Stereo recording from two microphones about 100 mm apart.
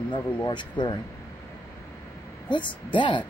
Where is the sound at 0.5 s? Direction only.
50° left (ahead or behind).